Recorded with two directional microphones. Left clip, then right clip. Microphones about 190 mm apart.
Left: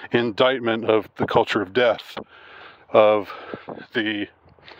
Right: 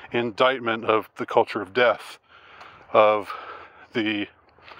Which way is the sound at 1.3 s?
50° left (ahead or behind).